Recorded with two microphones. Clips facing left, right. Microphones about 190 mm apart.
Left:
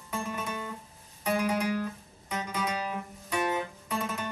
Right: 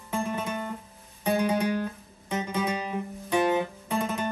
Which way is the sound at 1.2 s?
25° right (ahead or behind).